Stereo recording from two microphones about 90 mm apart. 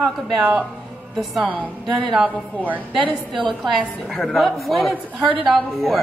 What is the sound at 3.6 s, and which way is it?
Speech, 5° left (ahead or behind).